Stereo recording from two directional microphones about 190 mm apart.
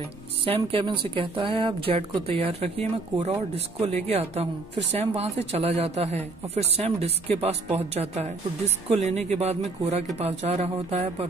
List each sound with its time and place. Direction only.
0.5 s speech: 30° right (ahead or behind)